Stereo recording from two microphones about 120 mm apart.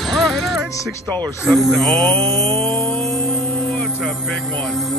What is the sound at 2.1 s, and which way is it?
Mantra, 50° right (ahead or behind).